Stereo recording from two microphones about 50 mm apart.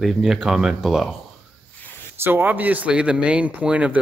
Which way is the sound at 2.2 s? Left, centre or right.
Right.